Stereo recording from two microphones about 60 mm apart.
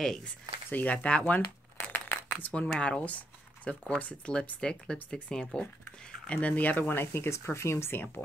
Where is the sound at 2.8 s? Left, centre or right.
Centre.